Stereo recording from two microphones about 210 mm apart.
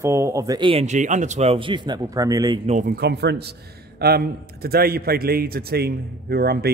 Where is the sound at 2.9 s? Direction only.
50° right (ahead or behind).